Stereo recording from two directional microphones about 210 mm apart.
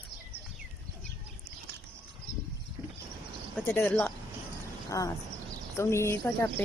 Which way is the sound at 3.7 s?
10° left (ahead or behind).